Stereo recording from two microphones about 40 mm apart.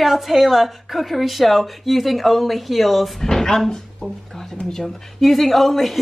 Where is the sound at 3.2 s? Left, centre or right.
Centre.